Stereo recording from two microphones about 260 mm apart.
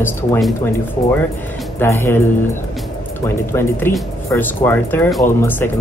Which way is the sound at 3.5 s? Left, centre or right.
Centre.